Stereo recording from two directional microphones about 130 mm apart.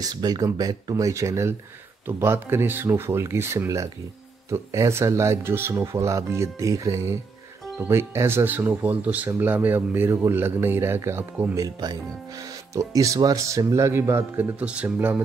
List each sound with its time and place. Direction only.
0.0 s speech: 30° right (ahead or behind)
11.5 s speech: 30° right (ahead or behind); by 15.2 s 15° right (ahead or behind)